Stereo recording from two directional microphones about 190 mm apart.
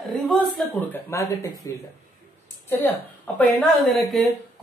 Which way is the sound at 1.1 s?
15° left (ahead or behind).